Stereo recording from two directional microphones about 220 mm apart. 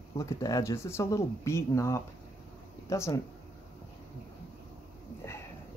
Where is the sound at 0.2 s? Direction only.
15° left (ahead or behind).